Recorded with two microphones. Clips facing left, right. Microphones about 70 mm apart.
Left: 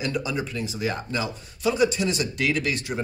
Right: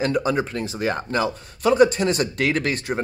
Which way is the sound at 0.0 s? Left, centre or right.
Right.